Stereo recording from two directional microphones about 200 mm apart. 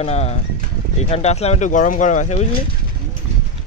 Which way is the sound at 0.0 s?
35° left (ahead or behind).